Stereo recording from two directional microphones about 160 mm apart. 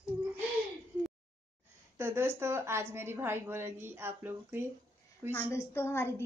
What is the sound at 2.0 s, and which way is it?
Speech, 15° right (ahead or behind).